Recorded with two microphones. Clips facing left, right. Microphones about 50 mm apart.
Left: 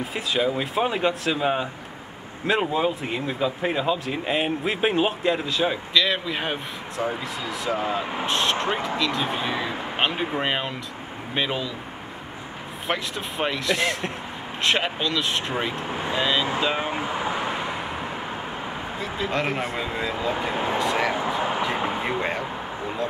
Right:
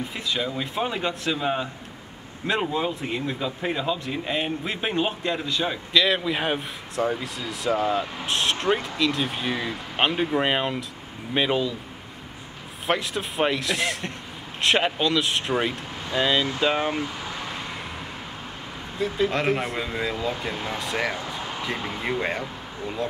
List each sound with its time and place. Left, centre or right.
0.0 s speech: centre
8.0 s speech: left
8.3 s speech: centre
9.9 s speech: centre
12.8 s speech: centre
15.9 s vehicle: left
16.2 s speech: centre
16.9 s vehicle: left
18.9 s speech: centre
20.3 s speech: left
20.7 s speech: centre
21.4 s a sound: left
22.2 s speech: centre